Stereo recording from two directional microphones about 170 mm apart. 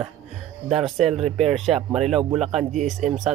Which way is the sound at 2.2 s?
35° right (ahead or behind).